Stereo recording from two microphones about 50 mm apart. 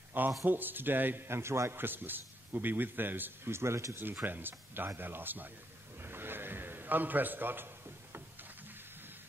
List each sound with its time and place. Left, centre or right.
0.2 s a man's voice: right
3.4 s speech: right
4.0 s speech: right
6.0 s a sound: right